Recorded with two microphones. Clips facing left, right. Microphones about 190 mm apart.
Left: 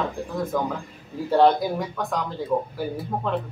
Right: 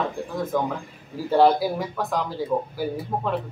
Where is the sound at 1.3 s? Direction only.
5° right (ahead or behind).